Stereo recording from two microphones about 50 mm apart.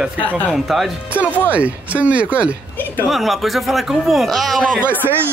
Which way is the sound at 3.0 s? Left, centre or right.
Centre.